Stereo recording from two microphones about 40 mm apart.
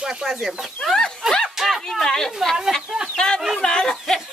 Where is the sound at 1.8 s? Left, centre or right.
Centre.